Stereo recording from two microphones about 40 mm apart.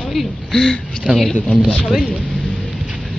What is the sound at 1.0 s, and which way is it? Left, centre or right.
Speech, centre.